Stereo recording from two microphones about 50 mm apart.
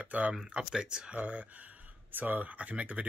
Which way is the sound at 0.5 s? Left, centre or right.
Centre.